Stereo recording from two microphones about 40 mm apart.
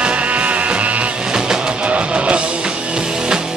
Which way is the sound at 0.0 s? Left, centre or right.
Right.